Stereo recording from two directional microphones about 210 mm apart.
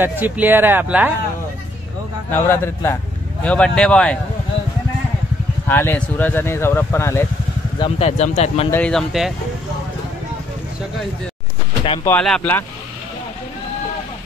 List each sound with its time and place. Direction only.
0.0 s speech: 10° right (ahead or behind)
2.3 s speech: 10° left (ahead or behind)
5.7 s speech: 10° left (ahead or behind)
7.8 s speech: 30° left (ahead or behind)
8.6 s speech: 5° left (ahead or behind)
12.0 s speech: 5° left (ahead or behind)